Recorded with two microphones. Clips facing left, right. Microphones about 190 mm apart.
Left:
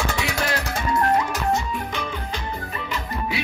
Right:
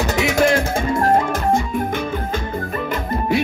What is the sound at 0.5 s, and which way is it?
Music, 50° right (ahead or behind).